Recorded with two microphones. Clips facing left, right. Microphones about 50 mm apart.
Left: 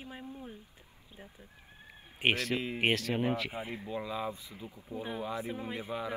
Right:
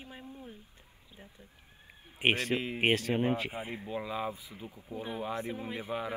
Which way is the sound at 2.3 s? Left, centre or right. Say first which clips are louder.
Right 1 dB; right.